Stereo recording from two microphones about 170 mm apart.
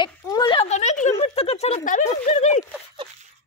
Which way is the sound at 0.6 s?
45° left (ahead or behind).